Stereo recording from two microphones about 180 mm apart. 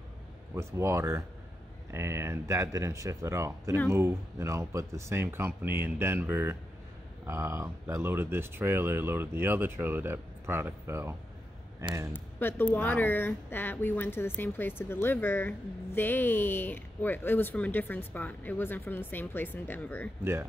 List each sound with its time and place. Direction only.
0.6 s speech: 15° right (ahead or behind)
12.1 s speech: 10° left (ahead or behind)